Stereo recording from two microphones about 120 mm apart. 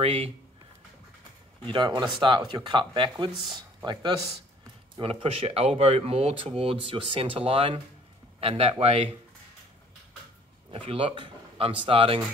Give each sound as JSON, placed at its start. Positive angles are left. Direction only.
{"t": 0.0, "sound": "speech", "side_deg": -55}
{"t": 1.7, "sound": "speech", "side_deg": -40}
{"t": 5.2, "sound": "speech", "side_deg": -55}
{"t": 10.9, "sound": "speech", "side_deg": -45}